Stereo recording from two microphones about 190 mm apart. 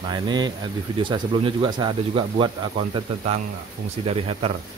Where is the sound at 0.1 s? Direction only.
20° right (ahead or behind).